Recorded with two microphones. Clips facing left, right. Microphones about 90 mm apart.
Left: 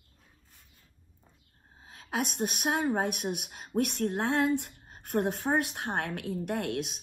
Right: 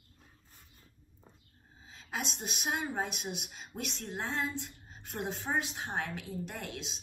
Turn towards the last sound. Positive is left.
turn(degrees=55)  # may be behind; listen again after turning